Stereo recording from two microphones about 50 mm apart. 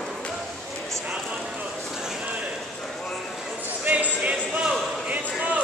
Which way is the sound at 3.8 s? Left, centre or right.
Right.